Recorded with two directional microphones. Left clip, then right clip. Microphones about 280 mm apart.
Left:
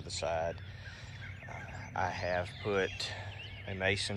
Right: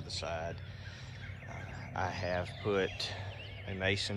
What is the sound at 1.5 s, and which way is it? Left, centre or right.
Speech, centre.